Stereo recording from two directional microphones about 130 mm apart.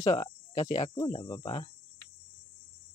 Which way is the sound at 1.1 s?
35° left (ahead or behind).